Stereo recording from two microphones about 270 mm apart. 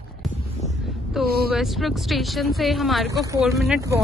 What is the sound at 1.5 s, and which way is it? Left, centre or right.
Speech, centre.